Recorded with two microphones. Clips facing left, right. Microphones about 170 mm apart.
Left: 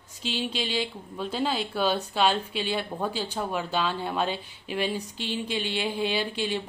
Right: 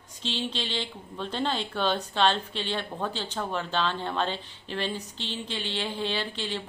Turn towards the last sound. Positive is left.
turn(degrees=10)  # may be behind; listen again after turning